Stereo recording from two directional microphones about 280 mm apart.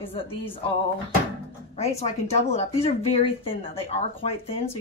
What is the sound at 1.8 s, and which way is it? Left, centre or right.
Speech, left.